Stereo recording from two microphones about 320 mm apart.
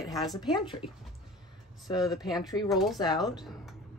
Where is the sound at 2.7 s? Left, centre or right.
Centre.